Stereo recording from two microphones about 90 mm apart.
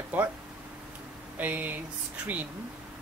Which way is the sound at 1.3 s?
20° right (ahead or behind).